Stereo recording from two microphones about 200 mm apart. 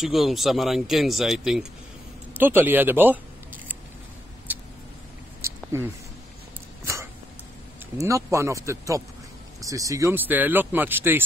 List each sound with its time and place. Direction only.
0.0 s speech: centre (ahead or behind)
4.5 s vehicle: 10° right (ahead or behind)
5.4 s a sound: 15° right (ahead or behind)
8.0 s speech: 15° right (ahead or behind)